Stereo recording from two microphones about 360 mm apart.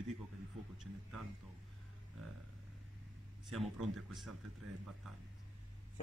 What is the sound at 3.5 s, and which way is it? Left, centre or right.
Speech, centre.